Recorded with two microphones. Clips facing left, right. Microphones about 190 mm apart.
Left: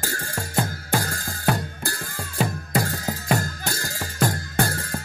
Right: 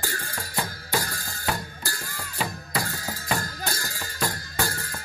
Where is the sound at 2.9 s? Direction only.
65° left (ahead or behind).